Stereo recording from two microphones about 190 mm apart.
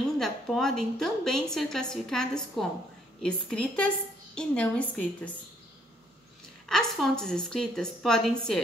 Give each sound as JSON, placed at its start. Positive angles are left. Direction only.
{"t": 0.2, "sound": "a woman's voice", "side_deg": 0}
{"t": 6.7, "sound": "a woman's voice", "side_deg": 5}